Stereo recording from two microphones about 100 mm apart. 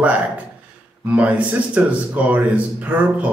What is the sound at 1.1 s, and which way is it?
Speech, 15° right (ahead or behind).